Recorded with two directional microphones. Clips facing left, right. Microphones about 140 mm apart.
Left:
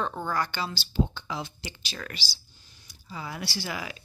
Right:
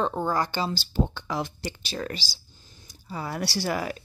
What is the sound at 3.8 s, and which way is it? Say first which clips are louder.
Speech: right 7 dB; 45° right (ahead or behind).